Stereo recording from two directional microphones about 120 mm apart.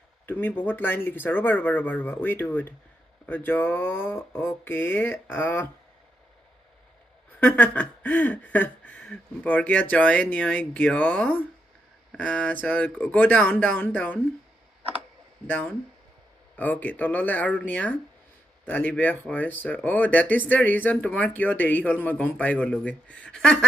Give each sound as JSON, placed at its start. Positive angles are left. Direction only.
{"t": 0.3, "sound": "speech", "side_deg": 15}
{"t": 7.3, "sound": "speech", "side_deg": 15}
{"t": 15.4, "sound": "speech", "side_deg": 15}